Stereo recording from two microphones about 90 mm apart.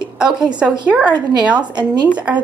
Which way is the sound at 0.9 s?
15° right (ahead or behind).